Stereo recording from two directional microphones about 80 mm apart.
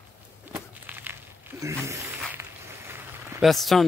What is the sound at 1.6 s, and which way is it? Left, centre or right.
Speech, right.